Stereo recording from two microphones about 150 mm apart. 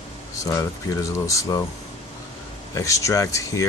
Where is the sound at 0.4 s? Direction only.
20° left (ahead or behind).